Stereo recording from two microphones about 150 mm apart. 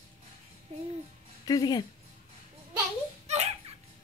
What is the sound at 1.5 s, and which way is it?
Speech, 25° left (ahead or behind).